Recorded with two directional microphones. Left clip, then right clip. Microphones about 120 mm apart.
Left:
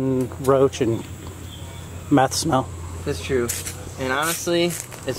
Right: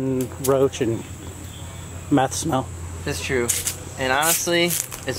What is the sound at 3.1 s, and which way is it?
Speech, 10° right (ahead or behind).